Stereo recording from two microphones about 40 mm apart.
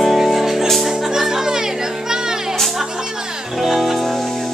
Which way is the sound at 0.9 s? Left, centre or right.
Centre.